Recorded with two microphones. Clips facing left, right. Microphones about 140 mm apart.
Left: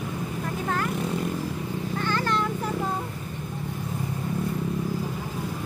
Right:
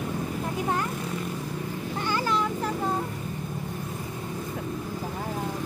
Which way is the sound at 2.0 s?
15° right (ahead or behind).